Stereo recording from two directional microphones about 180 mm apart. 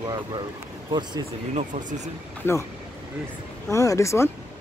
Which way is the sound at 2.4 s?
15° left (ahead or behind).